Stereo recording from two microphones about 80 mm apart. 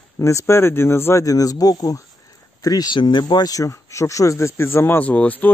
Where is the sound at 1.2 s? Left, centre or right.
Left.